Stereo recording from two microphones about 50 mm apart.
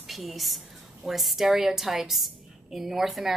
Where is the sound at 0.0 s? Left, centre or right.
Centre.